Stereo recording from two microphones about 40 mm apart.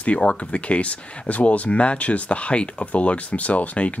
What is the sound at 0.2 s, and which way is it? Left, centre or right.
Speech, left.